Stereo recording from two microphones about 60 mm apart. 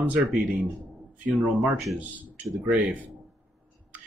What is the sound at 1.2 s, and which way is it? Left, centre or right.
Speech, right.